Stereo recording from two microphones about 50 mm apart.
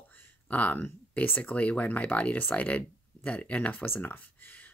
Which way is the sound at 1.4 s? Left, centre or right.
Left.